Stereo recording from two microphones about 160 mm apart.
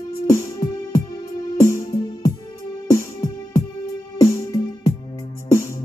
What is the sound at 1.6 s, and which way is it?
Music, 20° left (ahead or behind).